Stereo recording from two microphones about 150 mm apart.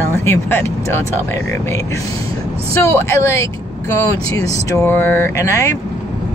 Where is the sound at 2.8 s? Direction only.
20° left (ahead or behind).